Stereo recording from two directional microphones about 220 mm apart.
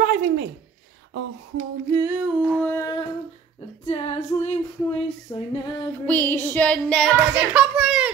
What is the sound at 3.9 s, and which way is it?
Female singing, 25° left (ahead or behind).